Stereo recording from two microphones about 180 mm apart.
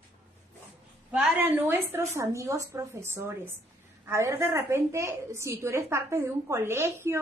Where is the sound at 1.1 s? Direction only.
10° right (ahead or behind).